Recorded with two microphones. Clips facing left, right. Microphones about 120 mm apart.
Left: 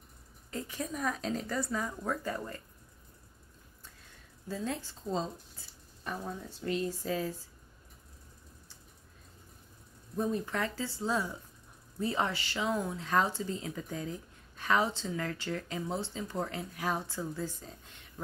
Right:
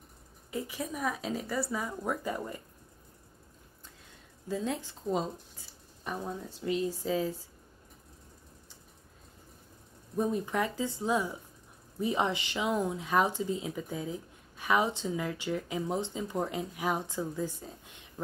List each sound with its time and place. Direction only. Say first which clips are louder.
0.5 s speech: right 2 dB; 10° right (ahead or behind)
4.5 s speech: right 3 dB; 15° right (ahead or behind)
10.1 s speech: right 3 dB; 15° right (ahead or behind)